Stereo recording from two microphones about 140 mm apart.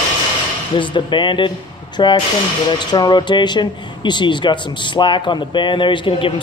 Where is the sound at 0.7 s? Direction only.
35° left (ahead or behind).